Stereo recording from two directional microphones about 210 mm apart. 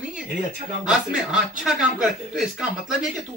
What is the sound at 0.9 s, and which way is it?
Speech, 5° right (ahead or behind).